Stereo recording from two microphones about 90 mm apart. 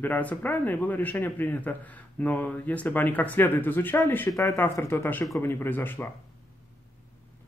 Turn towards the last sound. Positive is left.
turn(degrees=25)  # may be behind; listen again after turning